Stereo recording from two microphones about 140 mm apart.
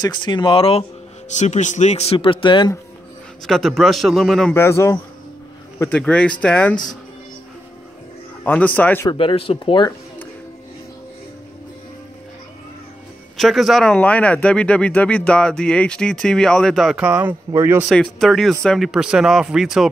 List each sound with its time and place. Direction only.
0.0 s speech: 35° left (ahead or behind)
1.3 s speech: 55° left (ahead or behind); by 2.7 s 35° left (ahead or behind)
3.4 s speech: 5° left (ahead or behind)
4.6 s speech: 20° left (ahead or behind)
8.5 s speech: 10° left (ahead or behind)
9.0 s speech: 35° left (ahead or behind)
13.4 s speech: centre (ahead or behind); by 17.8 s 15° right (ahead or behind)
17.8 s speech: centre (ahead or behind)